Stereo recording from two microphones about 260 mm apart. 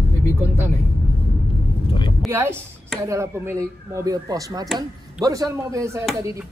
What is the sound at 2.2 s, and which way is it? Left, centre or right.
Speech, centre.